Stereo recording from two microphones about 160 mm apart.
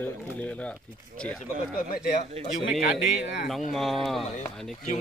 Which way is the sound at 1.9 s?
60° left (ahead or behind).